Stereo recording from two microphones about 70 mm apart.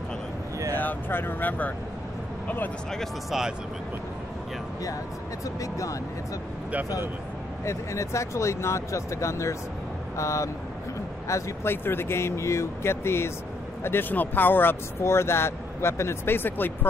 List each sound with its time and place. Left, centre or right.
0.7 s speech: left
3.3 s speech: centre
5.6 s speech: left
7.6 s speech: left
11.6 s speech: left